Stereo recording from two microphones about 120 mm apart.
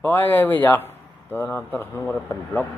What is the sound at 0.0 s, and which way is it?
Speech, 15° left (ahead or behind).